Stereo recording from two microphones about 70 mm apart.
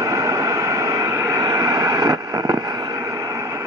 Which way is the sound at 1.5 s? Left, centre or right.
Right.